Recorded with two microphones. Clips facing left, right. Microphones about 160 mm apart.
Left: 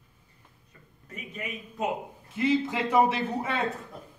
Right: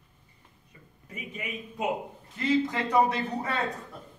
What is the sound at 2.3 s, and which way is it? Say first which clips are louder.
Speech: left 1 dB; 10° left (ahead or behind).